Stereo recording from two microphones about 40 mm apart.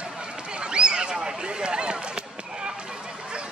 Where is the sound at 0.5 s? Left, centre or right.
Right.